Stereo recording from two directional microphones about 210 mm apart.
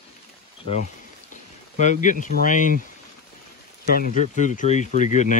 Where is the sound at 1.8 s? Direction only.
35° left (ahead or behind).